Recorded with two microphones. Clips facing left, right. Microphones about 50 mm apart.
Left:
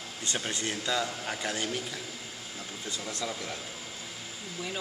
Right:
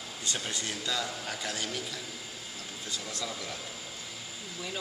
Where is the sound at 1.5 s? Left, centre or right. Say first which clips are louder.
Left 4 dB; left.